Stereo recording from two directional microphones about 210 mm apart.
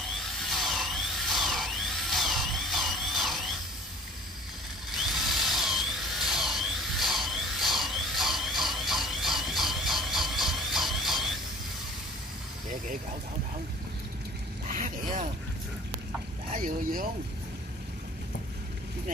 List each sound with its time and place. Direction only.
0.5 s tools: centre (ahead or behind)
4.9 s drill: centre (ahead or behind)
14.7 s vehicle: 40° right (ahead or behind)
16.5 s a sound: 40° right (ahead or behind)